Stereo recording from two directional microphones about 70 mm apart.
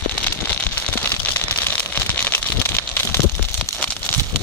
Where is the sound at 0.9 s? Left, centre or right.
Left.